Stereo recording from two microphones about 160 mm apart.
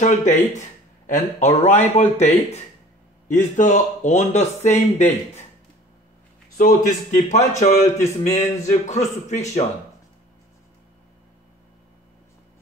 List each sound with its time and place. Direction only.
0.0 s speech: 45° left (ahead or behind)
6.5 s speech: 55° left (ahead or behind)